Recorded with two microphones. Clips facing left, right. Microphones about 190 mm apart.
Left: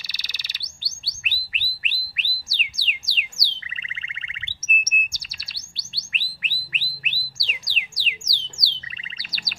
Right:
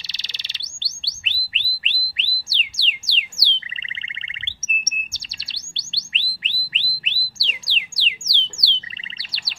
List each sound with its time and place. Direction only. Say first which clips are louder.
0.0 s bird: right 1 dB; 25° right (ahead or behind)
9.2 s chirp: left 2 dB; 30° right (ahead or behind)